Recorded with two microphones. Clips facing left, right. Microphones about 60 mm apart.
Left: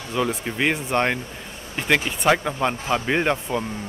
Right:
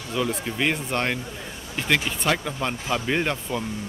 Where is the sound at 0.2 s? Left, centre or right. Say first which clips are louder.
Left 2 dB; centre.